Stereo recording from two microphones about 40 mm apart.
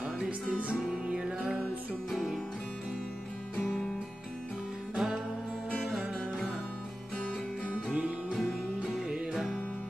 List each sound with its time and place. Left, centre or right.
0.5 s music: right
4.9 s music: centre
7.7 s music: right
9.3 s music: centre